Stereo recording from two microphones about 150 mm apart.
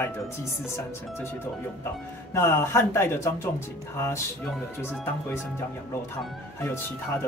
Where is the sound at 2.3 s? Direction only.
15° left (ahead or behind).